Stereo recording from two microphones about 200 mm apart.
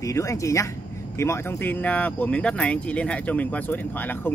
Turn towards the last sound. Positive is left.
turn(degrees=10)  # may be behind; listen again after turning